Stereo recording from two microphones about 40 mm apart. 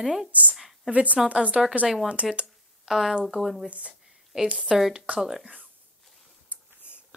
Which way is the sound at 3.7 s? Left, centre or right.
Right.